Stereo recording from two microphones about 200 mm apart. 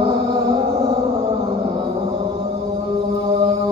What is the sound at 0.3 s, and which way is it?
Mantra, 25° right (ahead or behind).